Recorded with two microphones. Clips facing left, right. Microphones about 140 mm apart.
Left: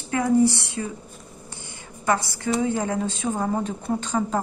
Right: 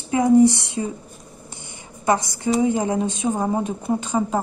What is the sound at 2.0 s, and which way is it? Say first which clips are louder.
A woman's voice: right 3 dB; 20° right (ahead or behind).